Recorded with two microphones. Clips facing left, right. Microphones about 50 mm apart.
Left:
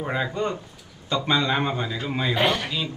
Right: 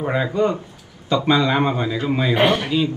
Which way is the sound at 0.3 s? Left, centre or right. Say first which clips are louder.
Right 7 dB; right.